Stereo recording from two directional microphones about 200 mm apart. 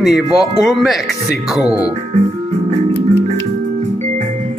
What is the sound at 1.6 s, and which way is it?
Speech, 20° left (ahead or behind).